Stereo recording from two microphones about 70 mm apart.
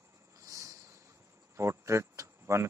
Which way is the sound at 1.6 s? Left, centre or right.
Right.